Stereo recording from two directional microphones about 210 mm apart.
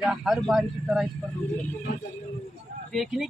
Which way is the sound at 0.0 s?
Centre (ahead or behind).